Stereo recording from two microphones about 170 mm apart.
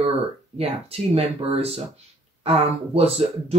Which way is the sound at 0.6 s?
35° right (ahead or behind).